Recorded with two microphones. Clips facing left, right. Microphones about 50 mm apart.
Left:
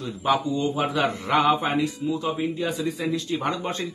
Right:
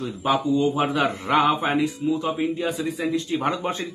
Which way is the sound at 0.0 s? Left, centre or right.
Centre.